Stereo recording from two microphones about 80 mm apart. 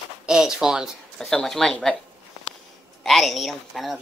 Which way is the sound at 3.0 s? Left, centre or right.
Centre.